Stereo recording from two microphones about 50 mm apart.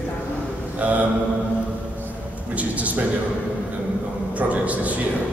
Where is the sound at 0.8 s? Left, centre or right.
Right.